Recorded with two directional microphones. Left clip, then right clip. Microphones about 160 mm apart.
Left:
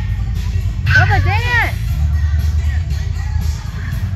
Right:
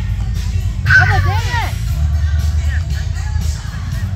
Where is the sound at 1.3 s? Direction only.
40° left (ahead or behind).